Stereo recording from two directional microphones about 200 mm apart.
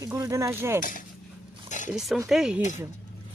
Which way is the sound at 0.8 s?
40° left (ahead or behind).